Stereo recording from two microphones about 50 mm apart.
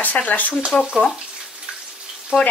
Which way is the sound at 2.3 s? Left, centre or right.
Centre.